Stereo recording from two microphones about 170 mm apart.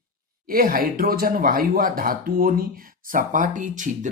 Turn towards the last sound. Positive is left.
turn(degrees=-50)  # may be behind; listen again after turning